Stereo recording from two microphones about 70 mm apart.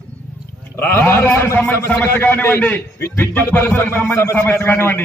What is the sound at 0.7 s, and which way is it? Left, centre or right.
A man's voice, left.